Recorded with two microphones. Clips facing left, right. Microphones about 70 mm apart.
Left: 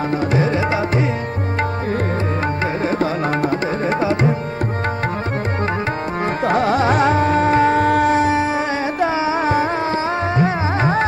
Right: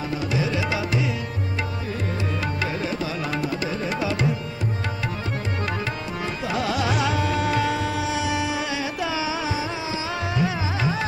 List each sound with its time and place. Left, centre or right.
0.1 s tabla: left
2.6 s tabla: left
6.2 s carnatic music: left
10.3 s music: left